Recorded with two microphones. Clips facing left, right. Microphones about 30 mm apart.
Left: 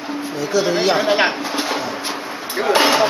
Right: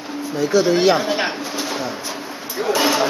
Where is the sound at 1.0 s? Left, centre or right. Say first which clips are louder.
Left 5 dB; left.